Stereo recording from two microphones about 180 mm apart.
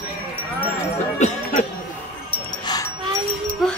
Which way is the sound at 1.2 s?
40° left (ahead or behind).